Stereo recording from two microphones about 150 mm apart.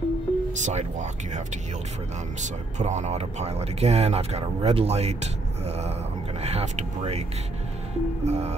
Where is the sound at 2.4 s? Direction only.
50° right (ahead or behind).